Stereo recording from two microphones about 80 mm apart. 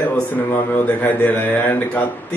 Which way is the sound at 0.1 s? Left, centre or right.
Centre.